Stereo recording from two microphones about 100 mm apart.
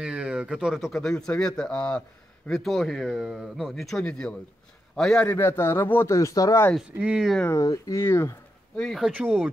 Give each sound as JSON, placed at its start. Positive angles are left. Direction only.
{"t": 0.0, "sound": "a man's voice", "side_deg": -10}
{"t": 5.2, "sound": "speech", "side_deg": 20}
{"t": 7.0, "sound": "speech", "side_deg": -10}
{"t": 7.5, "sound": "speech", "side_deg": 35}
{"t": 8.7, "sound": "speech", "side_deg": 5}
{"t": 9.0, "sound": "speech", "side_deg": -15}